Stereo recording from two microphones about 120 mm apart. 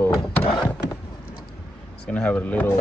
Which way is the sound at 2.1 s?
10° left (ahead or behind).